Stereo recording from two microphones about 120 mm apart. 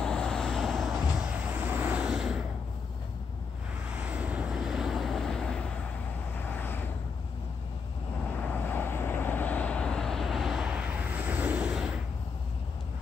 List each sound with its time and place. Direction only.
0.0 s vehicle: 5° left (ahead or behind)
4.1 s vehicle: 10° right (ahead or behind); by 5.7 s 5° left (ahead or behind)
6.5 s vehicle: 15° left (ahead or behind)
8.5 s vehicle: 15° left (ahead or behind); by 11.9 s 5° right (ahead or behind)